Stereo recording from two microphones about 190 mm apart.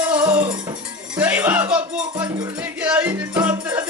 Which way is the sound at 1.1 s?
10° right (ahead or behind).